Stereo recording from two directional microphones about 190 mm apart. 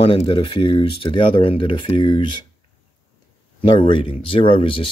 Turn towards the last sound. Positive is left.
turn(degrees=30)  # may be behind; listen again after turning